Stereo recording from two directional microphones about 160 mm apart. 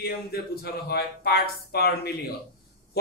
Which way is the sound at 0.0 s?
75° left (ahead or behind).